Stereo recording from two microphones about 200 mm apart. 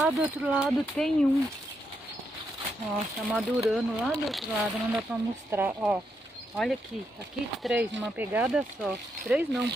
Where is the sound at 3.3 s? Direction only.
Centre (ahead or behind).